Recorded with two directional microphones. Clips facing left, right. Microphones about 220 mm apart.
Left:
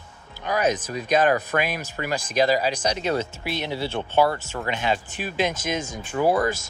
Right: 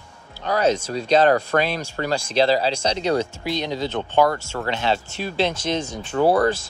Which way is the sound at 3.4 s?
15° right (ahead or behind).